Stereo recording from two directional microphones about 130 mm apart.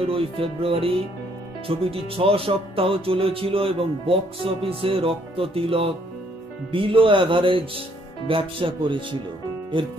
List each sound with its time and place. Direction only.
0.0 s speech: 45° right (ahead or behind)